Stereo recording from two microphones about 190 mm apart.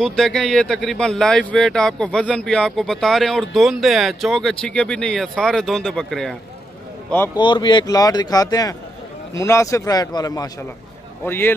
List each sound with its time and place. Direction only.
0.0 s speech: 5° left (ahead or behind)
7.3 s a man's voice: 25° left (ahead or behind)